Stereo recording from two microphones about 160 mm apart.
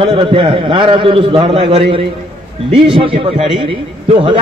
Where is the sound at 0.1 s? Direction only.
30° right (ahead or behind).